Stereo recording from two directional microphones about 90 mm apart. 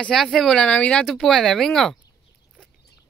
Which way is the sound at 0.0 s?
5° left (ahead or behind).